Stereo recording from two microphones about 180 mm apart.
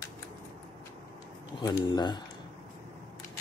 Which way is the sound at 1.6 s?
25° left (ahead or behind).